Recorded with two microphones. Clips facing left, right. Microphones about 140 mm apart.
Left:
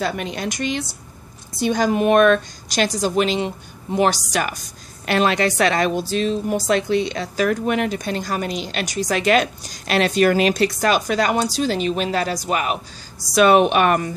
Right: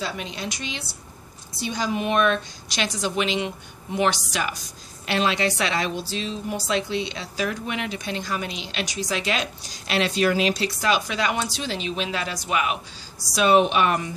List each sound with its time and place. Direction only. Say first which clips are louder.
0.0 s a woman's voice: left 6 dB; 55° left (ahead or behind)
13.3 s a woman's voice: left 4 dB; 60° left (ahead or behind)